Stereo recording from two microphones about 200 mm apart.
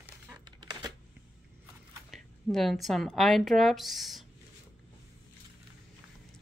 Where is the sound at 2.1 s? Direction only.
Centre (ahead or behind).